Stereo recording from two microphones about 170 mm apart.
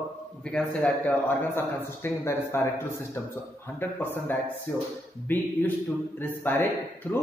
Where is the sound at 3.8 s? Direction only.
10° left (ahead or behind).